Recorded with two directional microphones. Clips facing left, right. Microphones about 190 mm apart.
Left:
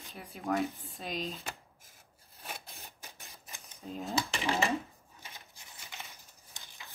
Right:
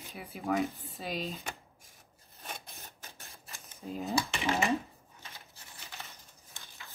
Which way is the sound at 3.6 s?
Centre (ahead or behind).